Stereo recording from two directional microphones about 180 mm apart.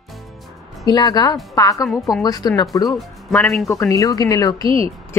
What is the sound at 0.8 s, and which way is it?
A woman's voice, 20° left (ahead or behind).